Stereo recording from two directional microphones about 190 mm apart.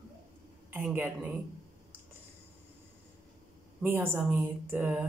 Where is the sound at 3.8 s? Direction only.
10° right (ahead or behind).